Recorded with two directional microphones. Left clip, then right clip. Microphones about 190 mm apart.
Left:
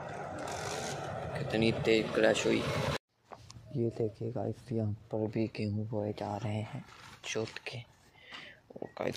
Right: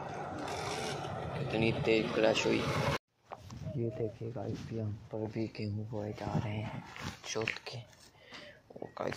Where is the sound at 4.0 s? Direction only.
65° left (ahead or behind).